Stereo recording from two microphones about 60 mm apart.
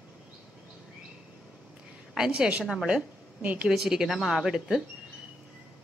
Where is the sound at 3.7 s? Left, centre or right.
Centre.